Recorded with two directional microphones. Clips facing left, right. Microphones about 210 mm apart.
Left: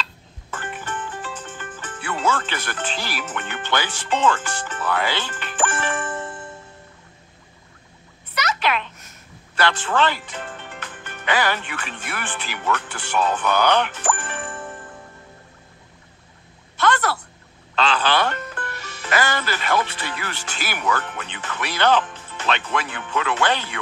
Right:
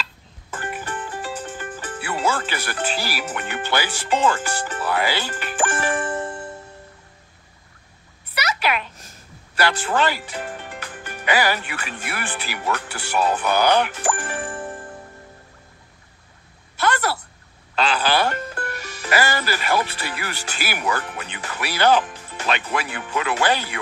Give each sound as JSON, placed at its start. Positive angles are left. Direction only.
{"t": 0.8, "sound": "music", "side_deg": -40}
{"t": 2.0, "sound": "speech", "side_deg": -10}
{"t": 5.4, "sound": "music", "side_deg": -10}
{"t": 5.7, "sound": "music", "side_deg": -40}
{"t": 8.4, "sound": "a sound", "side_deg": -10}
{"t": 8.9, "sound": "a sound", "side_deg": -30}
{"t": 9.6, "sound": "speech", "side_deg": -10}
{"t": 10.9, "sound": "music", "side_deg": -40}
{"t": 11.2, "sound": "speech", "side_deg": -10}
{"t": 14.1, "sound": "music", "side_deg": -40}
{"t": 16.7, "sound": "a sound", "side_deg": -10}
{"t": 18.4, "sound": "music", "side_deg": -35}
{"t": 19.0, "sound": "speech", "side_deg": -10}